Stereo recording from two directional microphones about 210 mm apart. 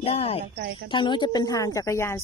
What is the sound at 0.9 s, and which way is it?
Speech, 20° left (ahead or behind).